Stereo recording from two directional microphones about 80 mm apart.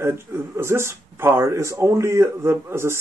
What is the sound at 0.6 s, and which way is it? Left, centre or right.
A man's voice, right.